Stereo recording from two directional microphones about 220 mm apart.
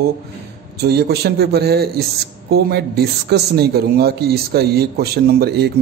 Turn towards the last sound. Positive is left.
turn(degrees=-45)  # may be behind; listen again after turning